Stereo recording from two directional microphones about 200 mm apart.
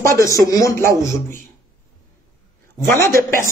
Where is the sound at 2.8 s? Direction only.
15° left (ahead or behind).